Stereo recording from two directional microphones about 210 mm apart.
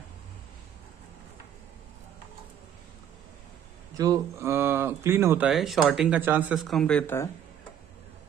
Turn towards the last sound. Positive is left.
turn(degrees=10)  # may be behind; listen again after turning